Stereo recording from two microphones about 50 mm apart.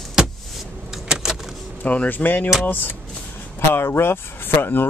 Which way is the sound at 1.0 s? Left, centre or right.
Centre.